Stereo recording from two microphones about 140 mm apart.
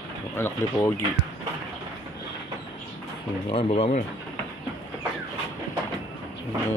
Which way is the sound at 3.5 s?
45° left (ahead or behind).